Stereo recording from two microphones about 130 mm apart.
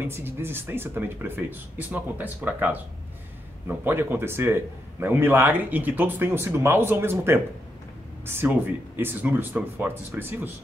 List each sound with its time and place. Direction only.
0.0 s a man's voice: 15° right (ahead or behind)